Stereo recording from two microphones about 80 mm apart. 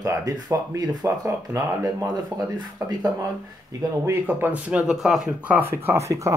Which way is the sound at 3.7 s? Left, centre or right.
Right.